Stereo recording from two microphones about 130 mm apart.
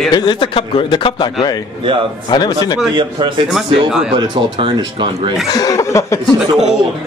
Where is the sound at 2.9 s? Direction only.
40° right (ahead or behind).